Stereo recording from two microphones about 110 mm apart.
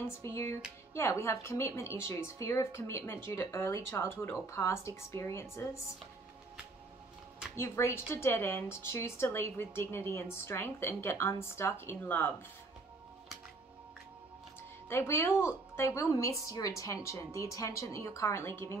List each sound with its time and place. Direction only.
0.2 s a woman's voice: 25° left (ahead or behind)
7.5 s a woman's voice: 25° left (ahead or behind)
14.9 s a woman's voice: 25° left (ahead or behind)